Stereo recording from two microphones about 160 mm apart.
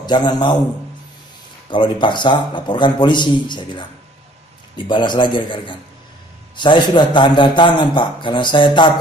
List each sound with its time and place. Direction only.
0.0 s a man's voice: 25° left (ahead or behind)
1.7 s a man's voice: 30° left (ahead or behind)